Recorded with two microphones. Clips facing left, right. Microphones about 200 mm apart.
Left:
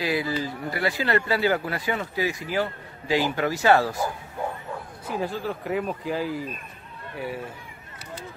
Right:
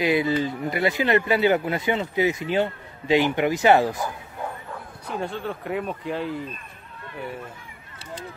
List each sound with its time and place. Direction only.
0.0 s speech: 20° right (ahead or behind)
5.0 s speech: centre (ahead or behind)